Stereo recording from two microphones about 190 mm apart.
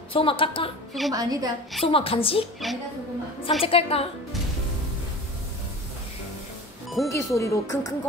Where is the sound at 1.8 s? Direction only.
30° left (ahead or behind).